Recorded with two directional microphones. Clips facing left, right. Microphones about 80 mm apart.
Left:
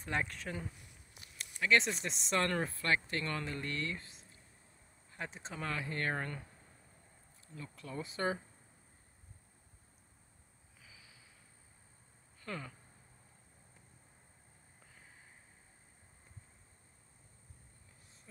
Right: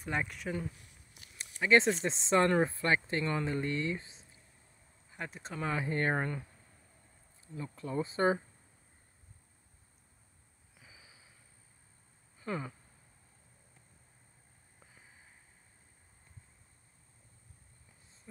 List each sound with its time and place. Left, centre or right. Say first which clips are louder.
0.0 s speech: right 2 dB; centre
1.4 s speech: right 5 dB; right
5.1 s speech: right 2 dB; centre
5.7 s speech: right 6 dB; right
7.5 s speech: right 8 dB; right
12.4 s a sound: right 6 dB; right